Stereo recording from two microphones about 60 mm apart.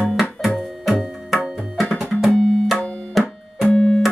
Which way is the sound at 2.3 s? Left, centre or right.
Centre.